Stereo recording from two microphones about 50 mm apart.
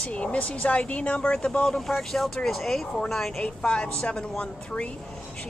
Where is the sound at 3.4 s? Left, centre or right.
Centre.